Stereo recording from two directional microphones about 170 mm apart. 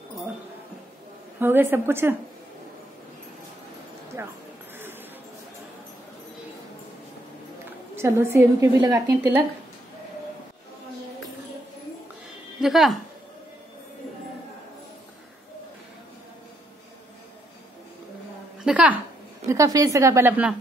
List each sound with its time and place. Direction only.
1.4 s a woman's voice: 10° right (ahead or behind)
4.2 s a woman's voice: 15° right (ahead or behind)
7.9 s a woman's voice: 15° right (ahead or behind)
12.5 s a woman's voice: centre (ahead or behind)
18.6 s a woman's voice: 5° right (ahead or behind)
19.4 s a woman's voice: 20° right (ahead or behind)